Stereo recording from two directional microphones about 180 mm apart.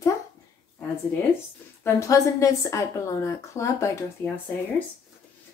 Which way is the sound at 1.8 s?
15° left (ahead or behind).